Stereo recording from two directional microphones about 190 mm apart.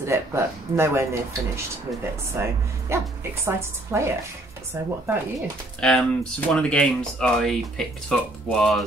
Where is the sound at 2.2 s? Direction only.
15° right (ahead or behind).